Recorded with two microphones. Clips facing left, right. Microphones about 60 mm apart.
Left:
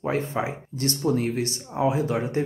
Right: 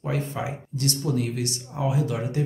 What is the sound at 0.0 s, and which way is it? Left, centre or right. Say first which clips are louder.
Speech: left 3 dB; left.